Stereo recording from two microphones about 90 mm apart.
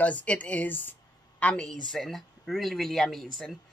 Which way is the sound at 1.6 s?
5° left (ahead or behind).